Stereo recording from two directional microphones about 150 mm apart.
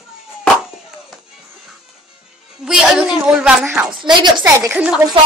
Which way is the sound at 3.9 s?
30° right (ahead or behind).